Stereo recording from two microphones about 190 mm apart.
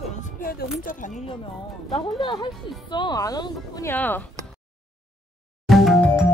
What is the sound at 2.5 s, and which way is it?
Speech, centre (ahead or behind).